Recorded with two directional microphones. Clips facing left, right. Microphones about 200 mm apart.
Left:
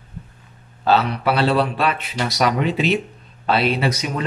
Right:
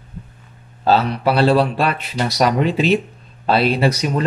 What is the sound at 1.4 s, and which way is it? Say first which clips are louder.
Speech: right 4 dB; 40° right (ahead or behind).